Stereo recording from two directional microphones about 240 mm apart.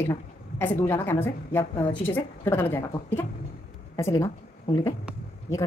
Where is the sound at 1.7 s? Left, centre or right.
Left.